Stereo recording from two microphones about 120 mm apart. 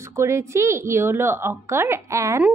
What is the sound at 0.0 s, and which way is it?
A woman's voice, 25° right (ahead or behind).